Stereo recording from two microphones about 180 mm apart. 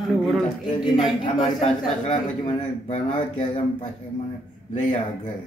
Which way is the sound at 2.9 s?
45° left (ahead or behind).